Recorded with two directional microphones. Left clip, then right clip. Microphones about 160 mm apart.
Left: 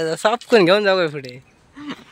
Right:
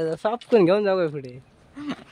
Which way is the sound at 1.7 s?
90° right.